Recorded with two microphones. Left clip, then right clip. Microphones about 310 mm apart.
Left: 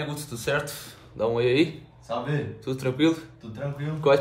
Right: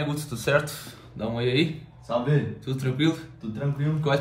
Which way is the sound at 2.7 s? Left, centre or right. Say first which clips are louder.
Left 3 dB; centre.